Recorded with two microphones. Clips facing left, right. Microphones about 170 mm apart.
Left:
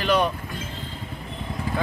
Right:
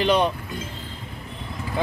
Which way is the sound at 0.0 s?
20° right (ahead or behind).